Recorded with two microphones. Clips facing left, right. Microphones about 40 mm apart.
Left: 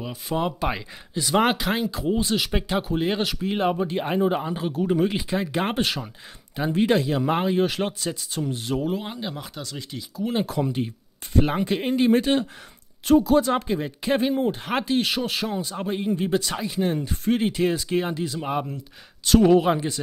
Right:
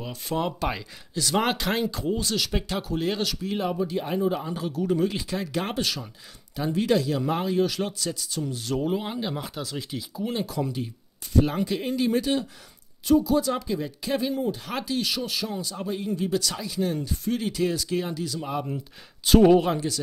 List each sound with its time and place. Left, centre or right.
0.0 s speech: centre
2.1 s speech: left
9.0 s speech: centre
10.6 s speech: left
19.2 s speech: centre
19.7 s speech: left